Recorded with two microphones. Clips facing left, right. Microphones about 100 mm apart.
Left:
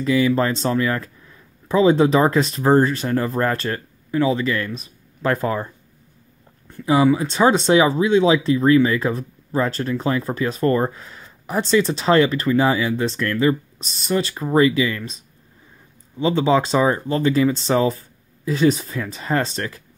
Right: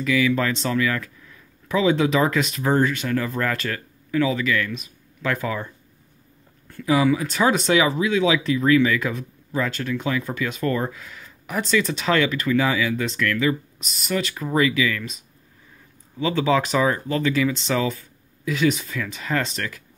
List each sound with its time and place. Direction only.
0.0 s speech: 35° left (ahead or behind)
6.7 s speech: 25° left (ahead or behind)